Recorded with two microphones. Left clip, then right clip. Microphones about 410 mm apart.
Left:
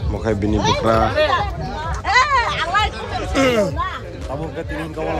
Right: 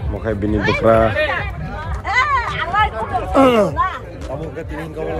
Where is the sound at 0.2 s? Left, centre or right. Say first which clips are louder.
Even; centre.